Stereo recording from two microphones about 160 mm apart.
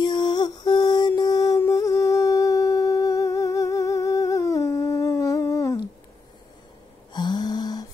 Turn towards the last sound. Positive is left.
turn(degrees=25)  # may be behind; listen again after turning